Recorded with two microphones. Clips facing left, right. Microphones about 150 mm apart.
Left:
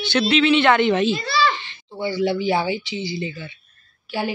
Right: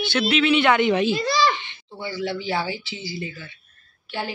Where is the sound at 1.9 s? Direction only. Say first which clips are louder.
Left 6 dB; 15° left (ahead or behind).